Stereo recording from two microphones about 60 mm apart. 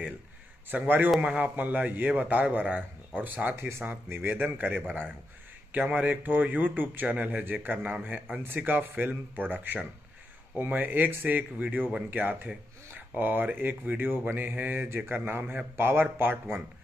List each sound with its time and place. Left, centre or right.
0.7 s a man's voice: right
3.5 s speech: right
3.8 s a man's voice: right